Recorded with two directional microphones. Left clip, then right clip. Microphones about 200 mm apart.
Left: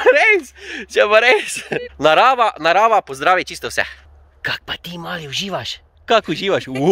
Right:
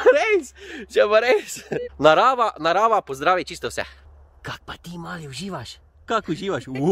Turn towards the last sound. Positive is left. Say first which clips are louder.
# left 8 dB
turn(degrees=20)  # may be behind; listen again after turning